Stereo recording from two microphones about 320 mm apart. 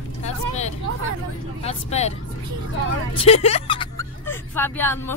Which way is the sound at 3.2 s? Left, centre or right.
Centre.